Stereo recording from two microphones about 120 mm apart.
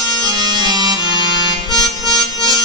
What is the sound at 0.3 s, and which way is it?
Music, 35° right (ahead or behind).